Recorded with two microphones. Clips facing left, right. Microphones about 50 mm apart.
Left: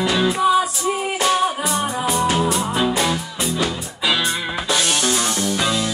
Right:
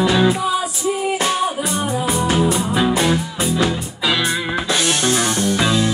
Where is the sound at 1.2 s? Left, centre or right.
Centre.